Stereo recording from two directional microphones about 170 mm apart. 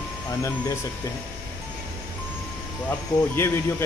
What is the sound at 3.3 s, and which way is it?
Speech, 15° left (ahead or behind).